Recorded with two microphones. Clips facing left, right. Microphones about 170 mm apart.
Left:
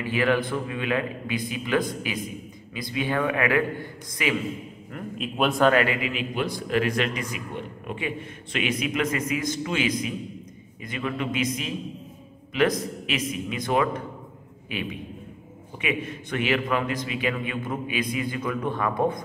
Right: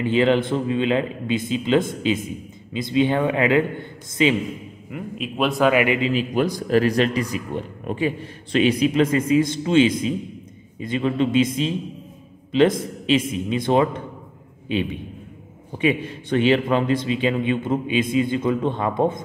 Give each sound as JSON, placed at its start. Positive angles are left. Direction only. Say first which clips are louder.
{"t": 0.0, "sound": "a man's voice", "louder": "right 5 dB", "side_deg": -25}
{"t": 4.9, "sound": "a man's voice", "louder": "right 2 dB", "side_deg": 0}
{"t": 5.9, "sound": "a man's voice", "louder": "right 8 dB", "side_deg": -30}
{"t": 6.3, "sound": "a man's voice", "louder": "right 5 dB", "side_deg": -40}